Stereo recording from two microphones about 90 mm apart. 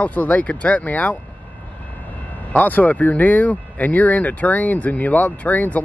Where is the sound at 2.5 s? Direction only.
20° left (ahead or behind).